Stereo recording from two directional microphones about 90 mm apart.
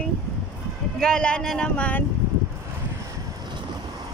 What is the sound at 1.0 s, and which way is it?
Speech, 10° left (ahead or behind).